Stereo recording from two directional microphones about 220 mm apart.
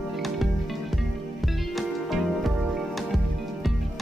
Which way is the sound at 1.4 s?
Centre (ahead or behind).